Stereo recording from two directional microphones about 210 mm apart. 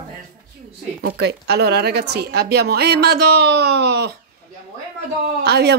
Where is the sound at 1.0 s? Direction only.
50° right (ahead or behind).